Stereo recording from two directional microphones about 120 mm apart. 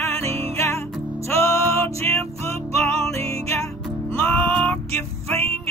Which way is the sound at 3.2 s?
60° right (ahead or behind).